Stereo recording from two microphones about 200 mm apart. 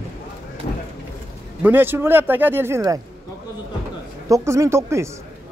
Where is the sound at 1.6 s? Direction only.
10° right (ahead or behind).